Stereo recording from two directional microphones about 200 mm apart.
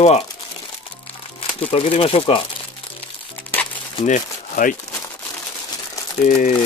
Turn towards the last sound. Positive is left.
turn(degrees=35)  # may be behind; listen again after turning